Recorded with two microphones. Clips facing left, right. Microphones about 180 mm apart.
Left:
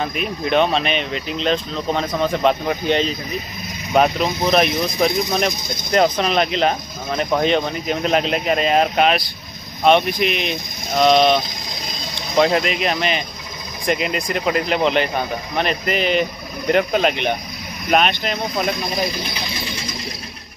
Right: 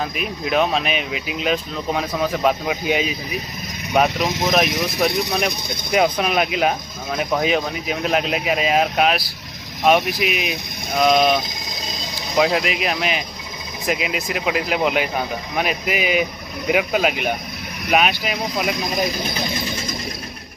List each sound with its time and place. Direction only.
0.0 s speech: centre (ahead or behind)
19.3 s speech: 45° right (ahead or behind)